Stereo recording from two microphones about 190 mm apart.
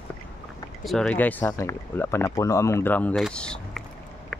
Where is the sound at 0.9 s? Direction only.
5° left (ahead or behind).